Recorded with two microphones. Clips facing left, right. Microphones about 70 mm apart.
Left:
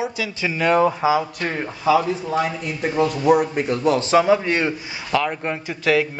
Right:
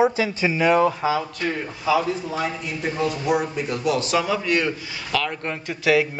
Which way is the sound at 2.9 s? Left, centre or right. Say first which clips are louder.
Left 6 dB; left.